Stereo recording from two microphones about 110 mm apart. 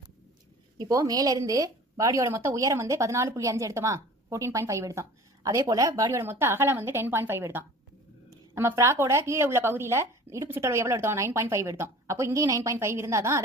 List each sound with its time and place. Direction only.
0.7 s a woman's voice: 30° right (ahead or behind)